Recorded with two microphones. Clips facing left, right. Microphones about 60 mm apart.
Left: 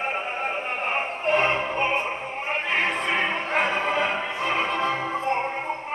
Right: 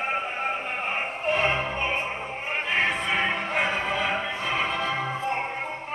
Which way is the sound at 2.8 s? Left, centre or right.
Left.